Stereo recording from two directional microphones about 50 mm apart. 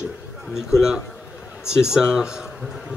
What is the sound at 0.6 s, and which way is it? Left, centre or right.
A man's voice, centre.